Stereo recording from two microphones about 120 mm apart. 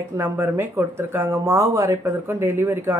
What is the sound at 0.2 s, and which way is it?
Speech, 20° right (ahead or behind).